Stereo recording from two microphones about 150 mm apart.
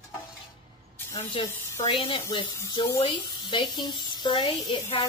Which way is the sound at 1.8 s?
35° left (ahead or behind).